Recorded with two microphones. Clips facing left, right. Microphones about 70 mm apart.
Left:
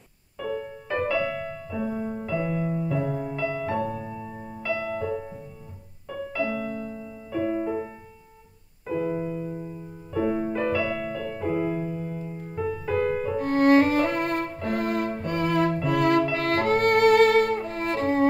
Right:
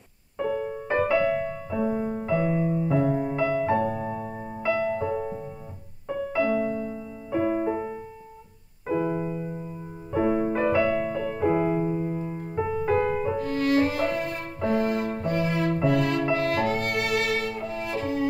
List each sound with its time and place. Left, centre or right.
0.5 s music: centre
0.8 s music: right
9.1 s music: centre
13.4 s music: left